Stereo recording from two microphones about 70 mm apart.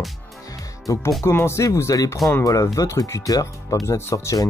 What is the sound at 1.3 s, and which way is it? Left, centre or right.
Speech, left.